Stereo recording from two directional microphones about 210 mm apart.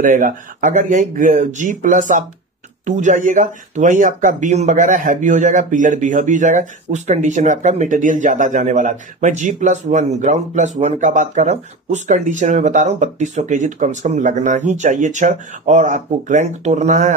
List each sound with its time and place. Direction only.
0.0 s speech: 40° right (ahead or behind)